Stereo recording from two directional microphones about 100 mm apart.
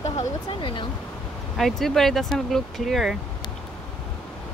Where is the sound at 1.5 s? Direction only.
Centre (ahead or behind).